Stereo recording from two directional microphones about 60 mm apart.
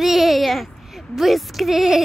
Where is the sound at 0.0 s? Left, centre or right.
Centre.